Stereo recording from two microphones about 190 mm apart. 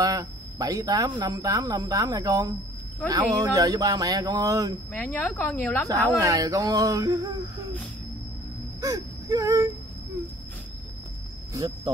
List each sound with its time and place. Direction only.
0.0 s speech: 20° right (ahead or behind)
4.9 s speech: 5° left (ahead or behind)
6.1 s a sound: 20° right (ahead or behind)
8.8 s whimper: 20° right (ahead or behind)
11.5 s speech: 20° right (ahead or behind)